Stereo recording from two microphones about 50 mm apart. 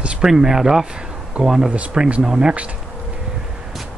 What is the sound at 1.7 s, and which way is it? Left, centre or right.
Speech, centre.